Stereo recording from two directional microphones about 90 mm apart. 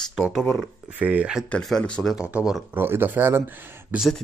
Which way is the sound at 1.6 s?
5° left (ahead or behind).